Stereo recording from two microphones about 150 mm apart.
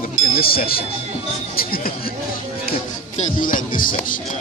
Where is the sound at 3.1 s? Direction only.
65° left (ahead or behind).